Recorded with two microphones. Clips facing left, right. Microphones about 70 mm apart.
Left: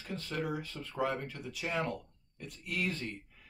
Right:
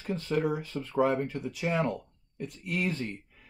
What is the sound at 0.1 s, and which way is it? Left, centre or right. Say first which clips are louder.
Speech: right 8 dB; right.